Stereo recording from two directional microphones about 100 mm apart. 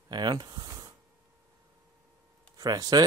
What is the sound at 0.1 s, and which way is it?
Speech, 45° right (ahead or behind).